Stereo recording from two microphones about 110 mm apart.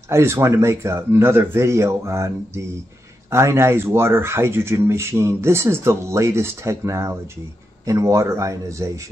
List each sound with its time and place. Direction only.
0.1 s speech: 25° right (ahead or behind)